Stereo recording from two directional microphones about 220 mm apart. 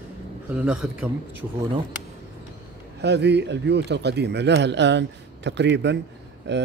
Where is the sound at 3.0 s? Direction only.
50° right (ahead or behind).